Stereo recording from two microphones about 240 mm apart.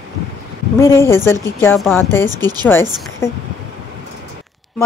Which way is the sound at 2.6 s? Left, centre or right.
Centre.